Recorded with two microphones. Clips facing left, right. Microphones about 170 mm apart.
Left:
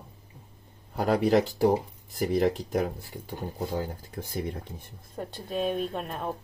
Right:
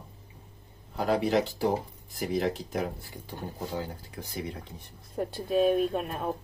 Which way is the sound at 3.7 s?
50° left (ahead or behind).